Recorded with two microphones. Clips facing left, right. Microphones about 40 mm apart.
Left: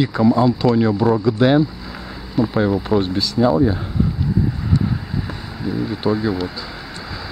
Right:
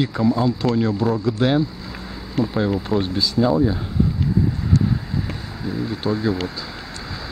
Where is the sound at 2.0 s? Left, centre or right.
Centre.